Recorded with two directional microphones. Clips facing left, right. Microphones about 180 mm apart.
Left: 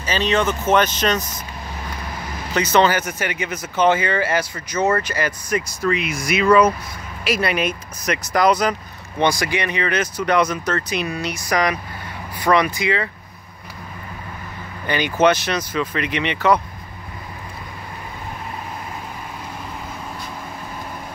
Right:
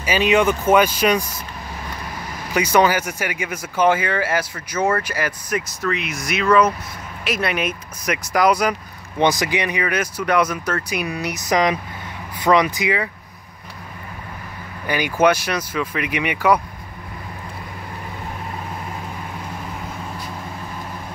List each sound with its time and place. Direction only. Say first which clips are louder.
0.0 s speech: right 3 dB; 10° right (ahead or behind)
2.5 s speech: even; 10° right (ahead or behind)
14.9 s speech: even; 10° right (ahead or behind)